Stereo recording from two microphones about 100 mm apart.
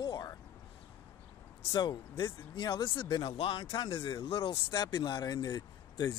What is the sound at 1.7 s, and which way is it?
Speech, 55° left (ahead or behind).